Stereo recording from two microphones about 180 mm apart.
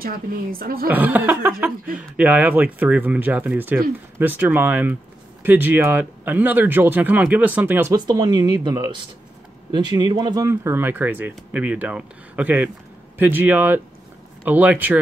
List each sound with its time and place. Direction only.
0.0 s a woman's voice: 55° right (ahead or behind)
0.8 s speech: 10° right (ahead or behind)